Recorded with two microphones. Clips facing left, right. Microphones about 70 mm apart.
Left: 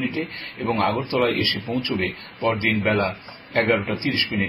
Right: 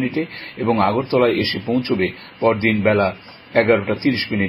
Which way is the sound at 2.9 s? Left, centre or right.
Right.